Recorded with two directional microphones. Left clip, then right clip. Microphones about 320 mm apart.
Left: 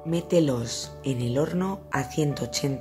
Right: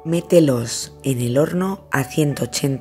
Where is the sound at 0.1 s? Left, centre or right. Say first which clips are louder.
Right 8 dB; centre.